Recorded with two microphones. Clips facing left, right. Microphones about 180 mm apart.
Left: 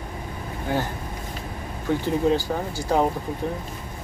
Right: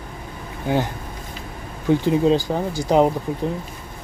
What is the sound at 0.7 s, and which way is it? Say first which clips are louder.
Speech: right 4 dB; 20° right (ahead or behind).